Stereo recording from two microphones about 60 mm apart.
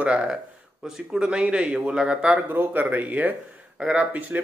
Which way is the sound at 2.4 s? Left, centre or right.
Right.